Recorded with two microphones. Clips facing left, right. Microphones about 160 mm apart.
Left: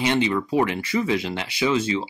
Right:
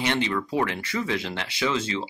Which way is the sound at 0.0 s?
15° left (ahead or behind).